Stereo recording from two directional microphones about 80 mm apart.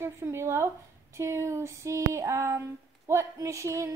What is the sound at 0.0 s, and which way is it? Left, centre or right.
A woman's voice, right.